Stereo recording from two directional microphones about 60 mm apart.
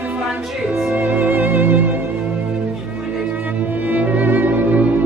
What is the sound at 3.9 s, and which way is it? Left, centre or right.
Music, right.